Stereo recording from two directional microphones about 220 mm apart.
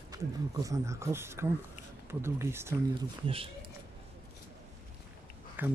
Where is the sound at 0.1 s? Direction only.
15° right (ahead or behind).